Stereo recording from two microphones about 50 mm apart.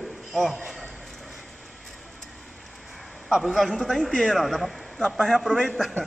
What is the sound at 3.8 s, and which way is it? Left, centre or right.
A man's voice, centre.